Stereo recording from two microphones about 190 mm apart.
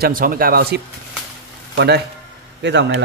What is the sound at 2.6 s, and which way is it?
Speech, 65° right (ahead or behind).